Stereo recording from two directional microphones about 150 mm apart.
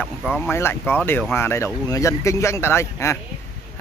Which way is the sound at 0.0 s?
Centre (ahead or behind).